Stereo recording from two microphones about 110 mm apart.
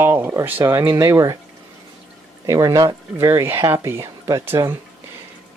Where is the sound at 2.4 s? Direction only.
30° right (ahead or behind).